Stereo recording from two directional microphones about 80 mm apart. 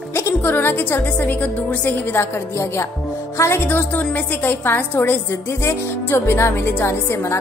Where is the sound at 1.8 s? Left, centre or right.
Left.